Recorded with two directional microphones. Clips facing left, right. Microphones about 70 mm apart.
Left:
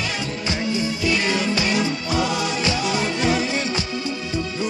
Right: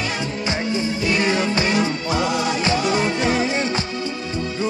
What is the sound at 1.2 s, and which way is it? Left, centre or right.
Music, right.